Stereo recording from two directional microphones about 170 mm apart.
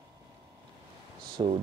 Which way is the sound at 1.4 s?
30° right (ahead or behind).